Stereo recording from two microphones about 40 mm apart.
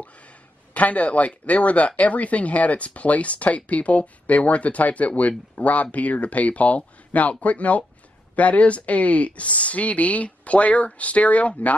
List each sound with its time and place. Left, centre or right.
0.7 s speech: left